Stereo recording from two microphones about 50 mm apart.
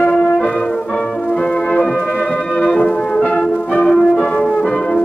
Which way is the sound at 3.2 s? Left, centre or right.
Left.